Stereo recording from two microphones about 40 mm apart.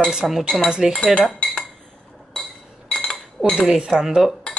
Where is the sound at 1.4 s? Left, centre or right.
Left.